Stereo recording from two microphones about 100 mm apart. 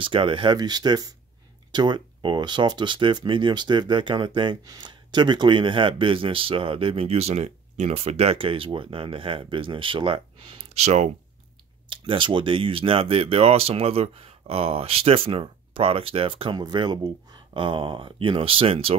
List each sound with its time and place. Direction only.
0.0 s speech: 60° right (ahead or behind)
0.6 s speech: 45° right (ahead or behind); by 11.1 s 90° right
11.9 s speech: 55° right (ahead or behind)
16.5 s speech: 45° right (ahead or behind); by 18.9 s 70° right (ahead or behind)